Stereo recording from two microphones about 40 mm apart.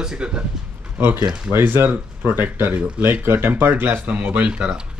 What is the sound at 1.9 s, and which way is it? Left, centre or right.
Speech, right.